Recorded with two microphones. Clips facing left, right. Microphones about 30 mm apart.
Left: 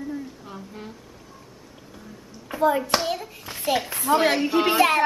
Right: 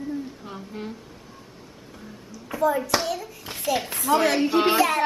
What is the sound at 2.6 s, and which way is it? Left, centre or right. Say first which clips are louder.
Speech: left 1 dB; left.